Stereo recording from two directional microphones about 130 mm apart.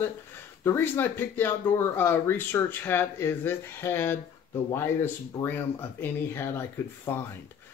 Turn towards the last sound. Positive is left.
turn(degrees=20)  # may be behind; listen again after turning